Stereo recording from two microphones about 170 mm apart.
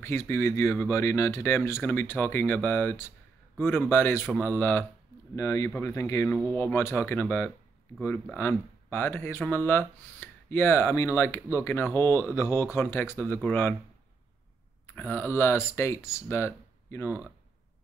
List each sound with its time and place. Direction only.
0.0 s speech: 15° left (ahead or behind)
14.9 s speech: 10° left (ahead or behind)